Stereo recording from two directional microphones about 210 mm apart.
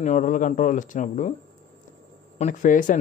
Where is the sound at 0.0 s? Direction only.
35° left (ahead or behind).